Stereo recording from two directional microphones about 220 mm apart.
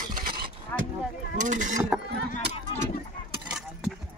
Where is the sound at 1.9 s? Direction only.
5° right (ahead or behind).